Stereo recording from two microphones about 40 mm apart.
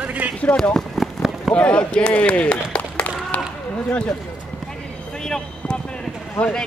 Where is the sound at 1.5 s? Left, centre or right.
Left.